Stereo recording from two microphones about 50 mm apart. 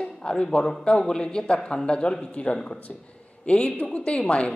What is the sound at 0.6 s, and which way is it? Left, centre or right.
A man's voice, centre.